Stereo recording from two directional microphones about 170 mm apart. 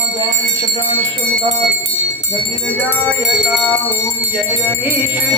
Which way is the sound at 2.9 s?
10° right (ahead or behind).